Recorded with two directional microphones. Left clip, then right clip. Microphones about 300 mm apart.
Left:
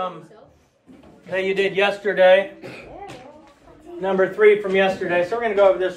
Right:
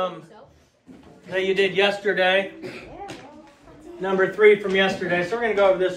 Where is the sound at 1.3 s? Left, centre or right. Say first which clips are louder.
Even; centre.